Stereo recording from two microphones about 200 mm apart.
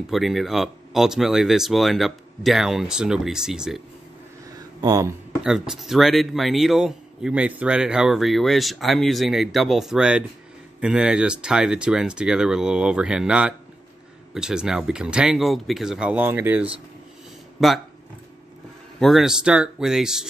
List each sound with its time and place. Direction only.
0.1 s speech: centre (ahead or behind)
4.5 s a sound: 15° right (ahead or behind)
5.4 s speech: centre (ahead or behind)
18.9 s speech: centre (ahead or behind)